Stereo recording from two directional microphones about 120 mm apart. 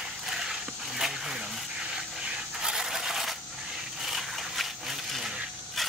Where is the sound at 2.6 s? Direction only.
5° right (ahead or behind).